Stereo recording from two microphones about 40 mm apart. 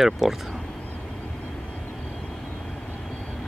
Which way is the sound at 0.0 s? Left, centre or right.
Centre.